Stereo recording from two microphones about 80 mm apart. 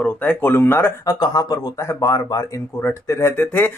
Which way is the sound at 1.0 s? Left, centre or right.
Left.